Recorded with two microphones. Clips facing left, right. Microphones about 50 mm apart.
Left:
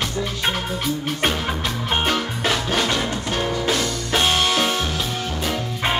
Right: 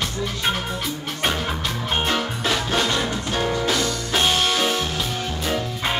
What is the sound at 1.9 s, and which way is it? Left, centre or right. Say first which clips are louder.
Music: left 2 dB; left.